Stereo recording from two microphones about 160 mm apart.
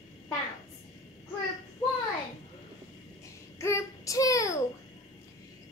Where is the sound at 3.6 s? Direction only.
20° left (ahead or behind).